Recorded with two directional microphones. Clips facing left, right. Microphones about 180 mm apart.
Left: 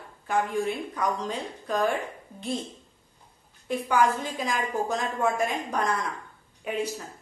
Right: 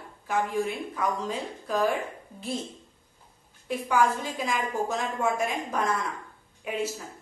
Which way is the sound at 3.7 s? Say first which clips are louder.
Left 1 dB; centre (ahead or behind).